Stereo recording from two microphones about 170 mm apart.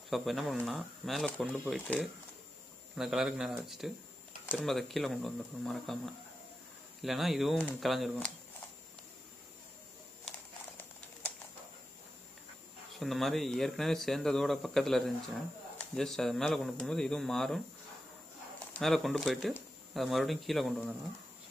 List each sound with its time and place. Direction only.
0.1 s speech: centre (ahead or behind)
13.0 s speech: centre (ahead or behind)
18.7 s speech: centre (ahead or behind)